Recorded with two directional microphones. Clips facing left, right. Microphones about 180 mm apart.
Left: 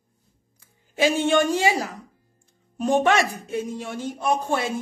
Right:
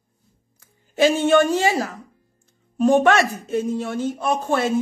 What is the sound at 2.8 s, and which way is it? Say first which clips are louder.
Speech: right 4 dB; 15° left (ahead or behind).